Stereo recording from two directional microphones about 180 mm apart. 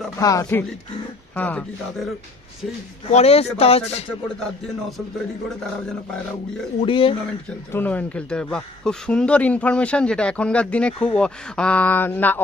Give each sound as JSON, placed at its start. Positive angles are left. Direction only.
{"t": 0.2, "sound": "speech", "side_deg": 20}
{"t": 3.1, "sound": "speech", "side_deg": 35}
{"t": 6.8, "sound": "speech", "side_deg": 30}
{"t": 7.7, "sound": "speech", "side_deg": 10}